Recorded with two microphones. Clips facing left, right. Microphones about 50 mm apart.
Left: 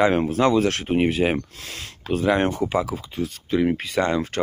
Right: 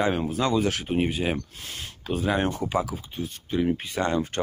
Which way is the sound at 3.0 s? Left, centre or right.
Left.